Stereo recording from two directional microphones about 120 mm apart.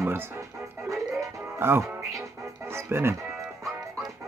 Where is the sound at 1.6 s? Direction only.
20° right (ahead or behind).